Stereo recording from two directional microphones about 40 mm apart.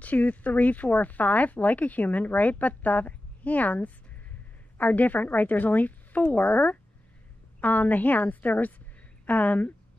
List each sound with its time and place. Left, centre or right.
0.0 s speech: left